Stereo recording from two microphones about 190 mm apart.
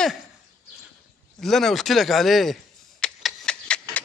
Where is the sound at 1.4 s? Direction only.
Centre (ahead or behind).